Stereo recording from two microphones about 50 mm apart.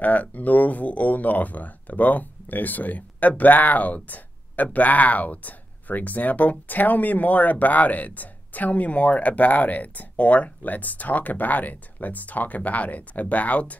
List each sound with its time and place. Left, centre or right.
0.0 s speech: left